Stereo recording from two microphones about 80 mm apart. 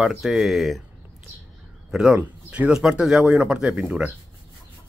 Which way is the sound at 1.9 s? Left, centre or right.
Centre.